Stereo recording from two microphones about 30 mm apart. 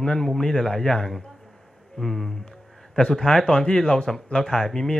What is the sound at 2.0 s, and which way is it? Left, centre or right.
Speech, centre.